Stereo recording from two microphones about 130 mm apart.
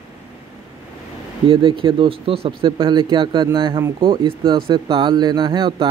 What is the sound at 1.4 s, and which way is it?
Speech, 40° right (ahead or behind).